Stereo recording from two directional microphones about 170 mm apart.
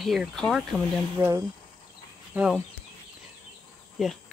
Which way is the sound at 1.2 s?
15° right (ahead or behind).